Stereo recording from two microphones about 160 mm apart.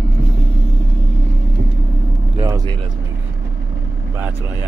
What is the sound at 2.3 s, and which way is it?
Vehicle, 20° right (ahead or behind).